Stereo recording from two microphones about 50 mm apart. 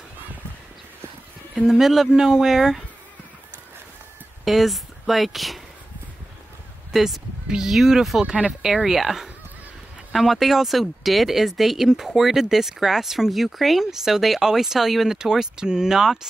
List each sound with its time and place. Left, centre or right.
1.7 s speech: centre
4.5 s speech: centre
6.9 s speech: centre
7.4 s speech: centre
15.1 s speech: centre